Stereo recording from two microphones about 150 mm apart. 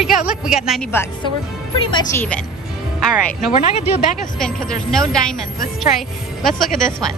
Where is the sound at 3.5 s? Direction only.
40° left (ahead or behind).